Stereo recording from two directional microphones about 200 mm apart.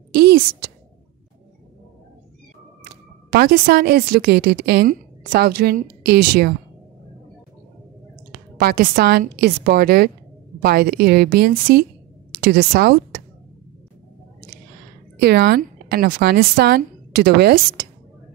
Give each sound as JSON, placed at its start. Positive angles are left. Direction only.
{"t": 0.1, "sound": "a sound", "side_deg": -55}
{"t": 3.3, "sound": "a woman's voice", "side_deg": -50}
{"t": 8.3, "sound": "a woman's voice", "side_deg": -50}
{"t": 15.1, "sound": "a woman's voice", "side_deg": -55}